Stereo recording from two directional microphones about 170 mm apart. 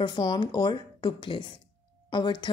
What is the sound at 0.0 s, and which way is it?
A woman's voice, 25° left (ahead or behind).